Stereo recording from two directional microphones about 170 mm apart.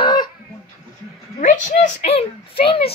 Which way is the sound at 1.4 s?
45° left (ahead or behind).